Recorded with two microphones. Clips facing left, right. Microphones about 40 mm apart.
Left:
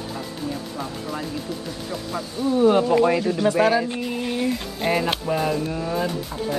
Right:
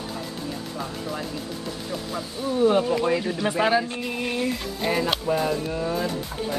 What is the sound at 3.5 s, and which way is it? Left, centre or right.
Speech, centre.